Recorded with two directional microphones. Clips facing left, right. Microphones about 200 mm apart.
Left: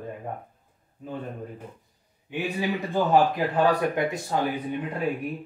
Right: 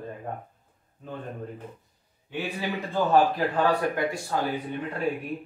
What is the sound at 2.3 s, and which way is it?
A man's voice, 15° left (ahead or behind).